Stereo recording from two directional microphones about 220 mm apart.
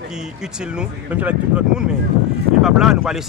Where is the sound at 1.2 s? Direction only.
5° right (ahead or behind).